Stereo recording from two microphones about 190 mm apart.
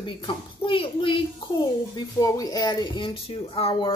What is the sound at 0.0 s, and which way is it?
Speech, 25° left (ahead or behind).